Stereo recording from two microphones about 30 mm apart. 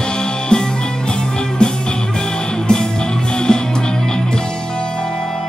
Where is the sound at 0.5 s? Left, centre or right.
Left.